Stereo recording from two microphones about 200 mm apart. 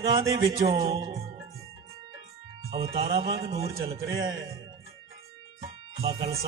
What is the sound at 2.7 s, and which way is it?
Speech, 30° right (ahead or behind).